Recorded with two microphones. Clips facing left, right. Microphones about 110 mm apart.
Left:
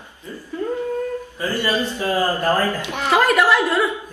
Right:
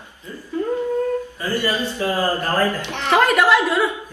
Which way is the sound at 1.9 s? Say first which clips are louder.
Even; 15° left (ahead or behind).